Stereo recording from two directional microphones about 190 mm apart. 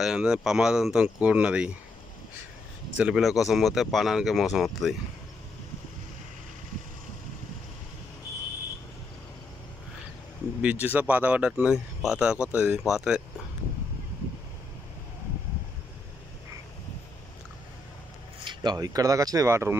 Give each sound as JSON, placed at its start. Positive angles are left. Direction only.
{"t": 0.0, "sound": "speech", "side_deg": -5}
{"t": 3.0, "sound": "speech", "side_deg": -5}
{"t": 10.6, "sound": "speech", "side_deg": -10}
{"t": 18.4, "sound": "speech", "side_deg": -25}